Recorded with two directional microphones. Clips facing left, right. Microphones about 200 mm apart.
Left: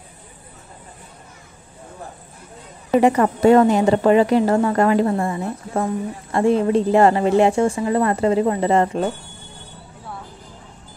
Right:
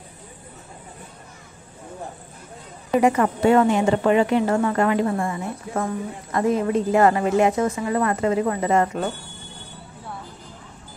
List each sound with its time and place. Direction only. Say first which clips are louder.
2.9 s a woman's voice: left 3 dB; 35° left (ahead or behind)